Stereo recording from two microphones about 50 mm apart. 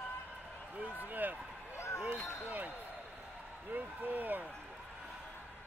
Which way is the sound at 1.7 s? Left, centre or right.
Left.